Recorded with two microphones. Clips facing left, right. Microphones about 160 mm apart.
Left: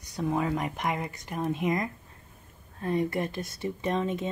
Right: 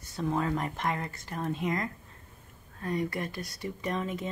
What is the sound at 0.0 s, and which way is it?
Speech, 15° left (ahead or behind).